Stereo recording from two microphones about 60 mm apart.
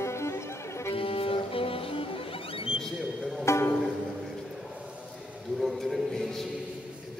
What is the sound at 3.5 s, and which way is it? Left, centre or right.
Music, left.